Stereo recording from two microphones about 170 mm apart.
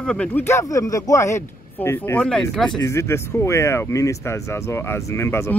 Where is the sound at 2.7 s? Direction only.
15° left (ahead or behind).